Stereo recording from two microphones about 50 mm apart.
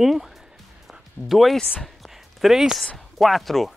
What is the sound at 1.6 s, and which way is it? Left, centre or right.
Speech, centre.